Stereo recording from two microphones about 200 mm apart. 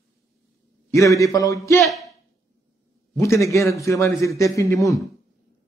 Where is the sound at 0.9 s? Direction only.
15° left (ahead or behind).